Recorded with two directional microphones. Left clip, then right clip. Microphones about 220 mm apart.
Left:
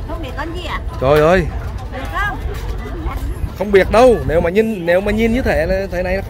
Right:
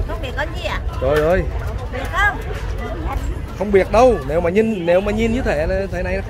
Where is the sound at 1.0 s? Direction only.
55° left (ahead or behind).